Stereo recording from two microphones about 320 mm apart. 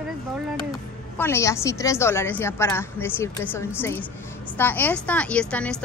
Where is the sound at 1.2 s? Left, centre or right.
Centre.